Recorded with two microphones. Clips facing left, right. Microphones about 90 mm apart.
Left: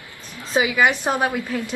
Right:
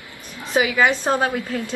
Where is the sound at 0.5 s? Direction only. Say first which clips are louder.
Even; 20° left (ahead or behind).